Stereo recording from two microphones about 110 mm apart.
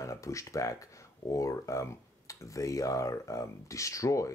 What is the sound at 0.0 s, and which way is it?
Speech, 30° left (ahead or behind).